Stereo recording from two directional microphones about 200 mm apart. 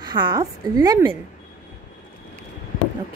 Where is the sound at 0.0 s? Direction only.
20° right (ahead or behind).